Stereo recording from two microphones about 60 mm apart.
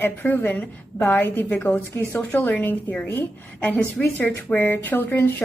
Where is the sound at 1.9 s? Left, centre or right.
Left.